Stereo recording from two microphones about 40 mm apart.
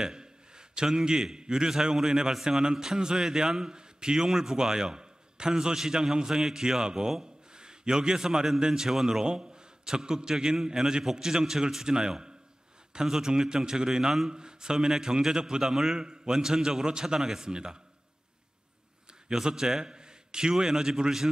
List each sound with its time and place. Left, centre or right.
0.0 s a sound: centre
0.8 s a man's voice: centre
9.2 s a man's voice: centre
19.2 s a man's voice: centre